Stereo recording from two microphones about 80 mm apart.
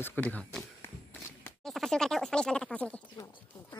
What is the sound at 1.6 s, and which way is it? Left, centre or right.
Speech, centre.